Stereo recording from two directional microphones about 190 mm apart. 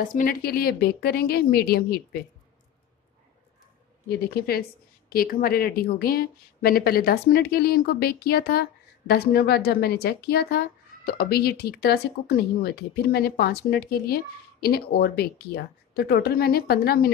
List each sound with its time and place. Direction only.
0.0 s a woman's voice: 45° left (ahead or behind)
4.1 s a woman's voice: 55° left (ahead or behind)